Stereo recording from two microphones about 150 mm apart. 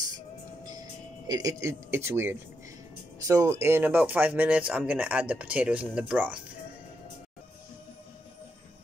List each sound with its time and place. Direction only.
0.7 s speech: 25° right (ahead or behind); by 6.4 s 10° right (ahead or behind)